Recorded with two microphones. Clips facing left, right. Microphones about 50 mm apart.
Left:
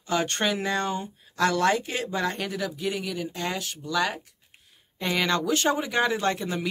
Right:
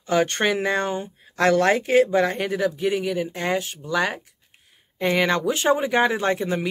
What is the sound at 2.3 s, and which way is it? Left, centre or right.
Speech, right.